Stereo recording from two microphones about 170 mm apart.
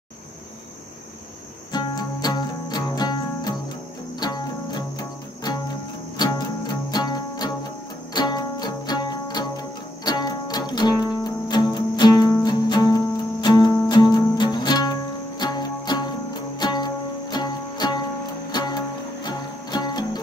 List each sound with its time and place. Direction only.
1.7 s music: 25° left (ahead or behind)
18.5 s cricket: 25° left (ahead or behind)